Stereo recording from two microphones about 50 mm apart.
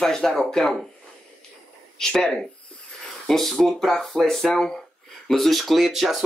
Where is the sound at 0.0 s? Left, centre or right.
Centre.